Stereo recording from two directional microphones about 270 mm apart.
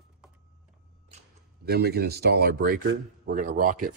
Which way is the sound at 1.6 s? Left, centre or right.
Right.